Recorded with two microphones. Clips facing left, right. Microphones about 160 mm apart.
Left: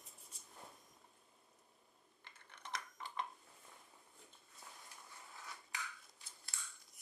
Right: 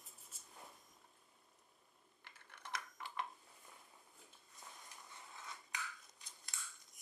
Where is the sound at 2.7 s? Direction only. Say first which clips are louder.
Even; 5° right (ahead or behind).